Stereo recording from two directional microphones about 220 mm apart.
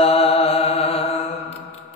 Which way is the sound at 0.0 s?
25° left (ahead or behind).